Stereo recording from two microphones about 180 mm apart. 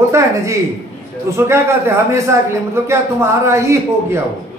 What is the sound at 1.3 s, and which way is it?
A man's voice, 15° right (ahead or behind).